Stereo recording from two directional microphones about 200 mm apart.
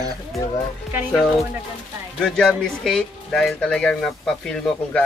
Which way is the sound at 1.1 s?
Centre (ahead or behind).